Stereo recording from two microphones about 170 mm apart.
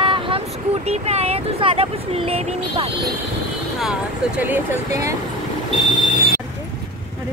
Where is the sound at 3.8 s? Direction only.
5° right (ahead or behind).